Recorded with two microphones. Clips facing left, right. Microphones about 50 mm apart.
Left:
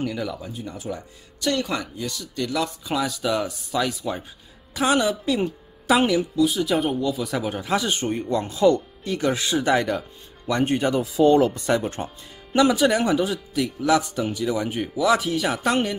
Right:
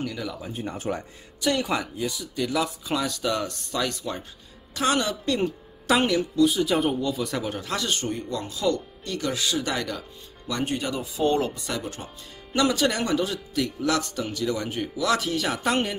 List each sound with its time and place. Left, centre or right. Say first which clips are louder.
0.0 s a woman's voice: left 4 dB; centre
0.5 s speech: right 2 dB; right
1.4 s a woman's voice: even; centre; by 8.8 s left
9.0 s speech: left 5 dB; centre
9.3 s speech: left 6 dB; left
12.5 s a woman's voice: left 5 dB; centre